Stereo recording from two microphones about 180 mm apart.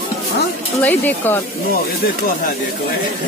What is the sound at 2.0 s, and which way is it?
Speech, 55° left (ahead or behind).